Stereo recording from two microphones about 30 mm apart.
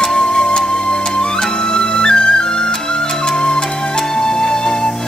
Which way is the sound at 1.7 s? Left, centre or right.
Left.